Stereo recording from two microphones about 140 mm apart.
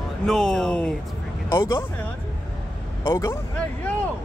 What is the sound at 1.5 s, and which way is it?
Speech, 20° left (ahead or behind).